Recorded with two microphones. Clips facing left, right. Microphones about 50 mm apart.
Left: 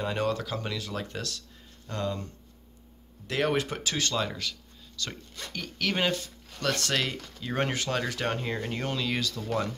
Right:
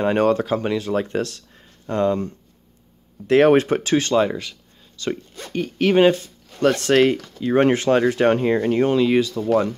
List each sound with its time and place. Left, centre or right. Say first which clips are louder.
0.0 s speech: right 11 dB; right
7.3 s speech: right 11 dB; centre
7.6 s speech: right 13 dB; right